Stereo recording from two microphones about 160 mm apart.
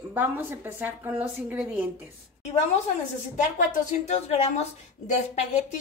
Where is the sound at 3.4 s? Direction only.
50° left (ahead or behind).